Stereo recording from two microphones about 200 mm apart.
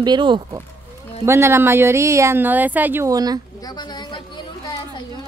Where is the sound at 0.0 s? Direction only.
20° right (ahead or behind).